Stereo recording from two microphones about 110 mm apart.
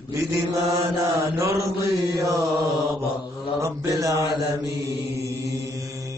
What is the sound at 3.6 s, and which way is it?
Mantra, 30° right (ahead or behind).